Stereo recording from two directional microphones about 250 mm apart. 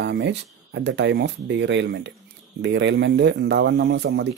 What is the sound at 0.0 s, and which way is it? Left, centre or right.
Speech, right.